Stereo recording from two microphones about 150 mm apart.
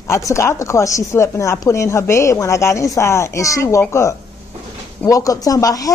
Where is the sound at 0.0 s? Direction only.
20° left (ahead or behind).